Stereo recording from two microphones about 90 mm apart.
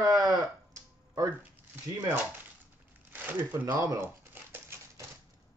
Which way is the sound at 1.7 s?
25° right (ahead or behind).